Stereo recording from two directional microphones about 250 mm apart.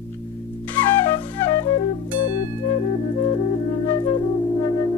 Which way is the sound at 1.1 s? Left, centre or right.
Centre.